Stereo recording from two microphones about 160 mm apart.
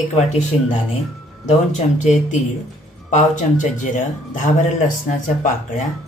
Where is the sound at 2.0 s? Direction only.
50° left (ahead or behind).